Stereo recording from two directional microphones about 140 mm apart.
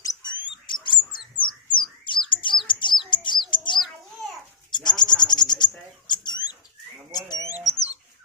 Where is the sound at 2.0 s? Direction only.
35° left (ahead or behind).